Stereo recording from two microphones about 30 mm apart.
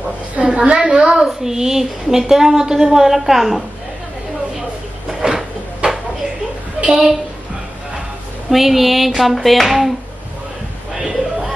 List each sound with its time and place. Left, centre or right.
0.5 s a woman's voice: right; by 3.6 s centre
5.2 s a sound: right
8.5 s a woman's voice: centre